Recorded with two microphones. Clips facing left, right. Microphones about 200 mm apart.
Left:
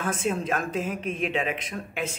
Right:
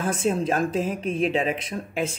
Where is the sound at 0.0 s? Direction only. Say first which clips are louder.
Right 4 dB; 35° right (ahead or behind).